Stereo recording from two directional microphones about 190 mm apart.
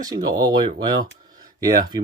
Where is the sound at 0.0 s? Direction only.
20° right (ahead or behind).